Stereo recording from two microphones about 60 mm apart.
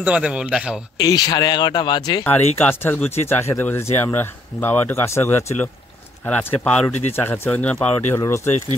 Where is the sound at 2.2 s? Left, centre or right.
Left.